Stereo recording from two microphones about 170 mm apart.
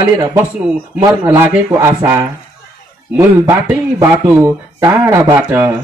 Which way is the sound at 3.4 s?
15° right (ahead or behind).